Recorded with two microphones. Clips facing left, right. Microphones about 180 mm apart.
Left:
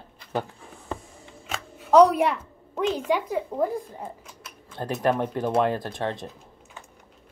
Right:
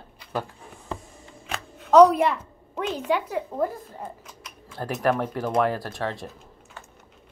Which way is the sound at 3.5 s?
15° left (ahead or behind).